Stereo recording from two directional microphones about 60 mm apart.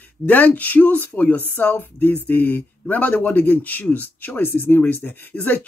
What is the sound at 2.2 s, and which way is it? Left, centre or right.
Speech, left.